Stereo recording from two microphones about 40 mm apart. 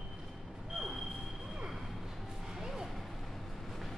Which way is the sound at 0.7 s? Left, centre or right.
Centre.